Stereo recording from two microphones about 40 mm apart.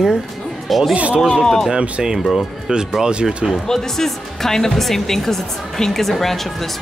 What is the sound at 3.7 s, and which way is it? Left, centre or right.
Speech, centre.